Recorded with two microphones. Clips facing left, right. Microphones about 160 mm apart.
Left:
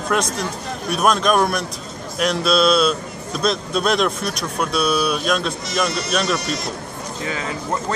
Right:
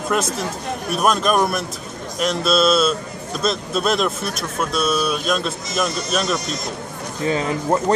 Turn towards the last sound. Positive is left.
turn(degrees=-30)  # may be behind; listen again after turning